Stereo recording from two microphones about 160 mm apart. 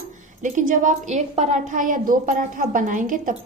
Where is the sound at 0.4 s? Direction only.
55° right (ahead or behind).